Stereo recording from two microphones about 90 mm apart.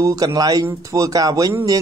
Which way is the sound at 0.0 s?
40° right (ahead or behind).